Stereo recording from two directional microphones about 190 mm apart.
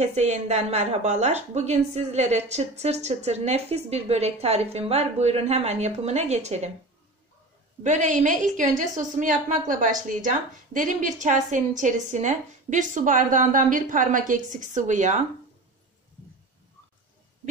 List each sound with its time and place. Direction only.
0.0 s a woman's voice: 35° right (ahead or behind)
7.8 s a woman's voice: 40° right (ahead or behind)